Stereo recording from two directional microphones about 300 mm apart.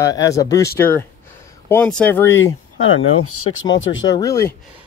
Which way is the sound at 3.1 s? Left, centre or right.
Left.